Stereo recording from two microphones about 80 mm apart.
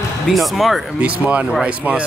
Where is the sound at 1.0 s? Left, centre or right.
Centre.